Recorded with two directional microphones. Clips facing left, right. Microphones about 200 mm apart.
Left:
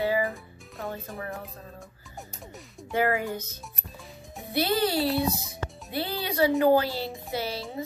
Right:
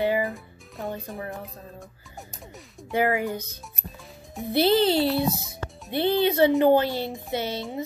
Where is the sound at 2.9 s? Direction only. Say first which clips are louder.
Right 2 dB; 15° right (ahead or behind).